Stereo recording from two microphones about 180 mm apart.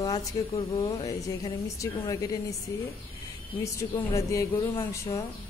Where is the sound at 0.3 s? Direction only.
20° left (ahead or behind).